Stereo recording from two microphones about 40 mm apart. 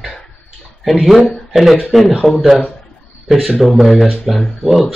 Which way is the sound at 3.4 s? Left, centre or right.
Centre.